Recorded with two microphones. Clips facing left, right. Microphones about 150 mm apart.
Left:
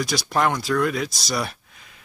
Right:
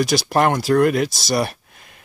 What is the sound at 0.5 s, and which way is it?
Speech, 40° right (ahead or behind).